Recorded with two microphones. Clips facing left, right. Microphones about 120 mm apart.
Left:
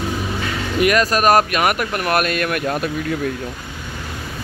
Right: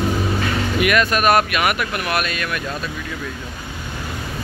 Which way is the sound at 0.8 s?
35° left (ahead or behind).